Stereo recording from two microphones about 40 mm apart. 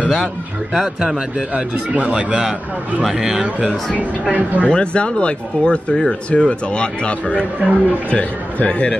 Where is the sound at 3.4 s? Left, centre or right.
Right.